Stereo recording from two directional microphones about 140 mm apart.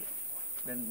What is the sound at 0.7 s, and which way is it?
Speech, centre (ahead or behind).